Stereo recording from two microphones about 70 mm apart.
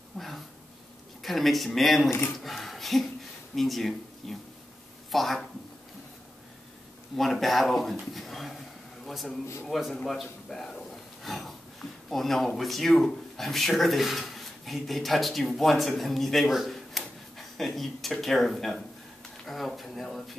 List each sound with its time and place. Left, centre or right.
0.2 s a sound: centre
1.2 s speech: centre
7.2 s speech: centre